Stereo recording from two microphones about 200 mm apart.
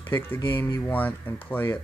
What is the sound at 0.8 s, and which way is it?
Speech, 10° left (ahead or behind).